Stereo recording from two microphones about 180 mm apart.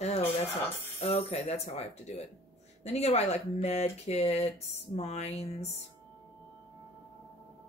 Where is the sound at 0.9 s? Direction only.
35° left (ahead or behind).